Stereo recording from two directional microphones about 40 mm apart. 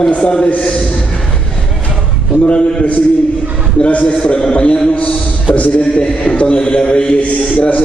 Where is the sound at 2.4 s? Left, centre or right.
Left.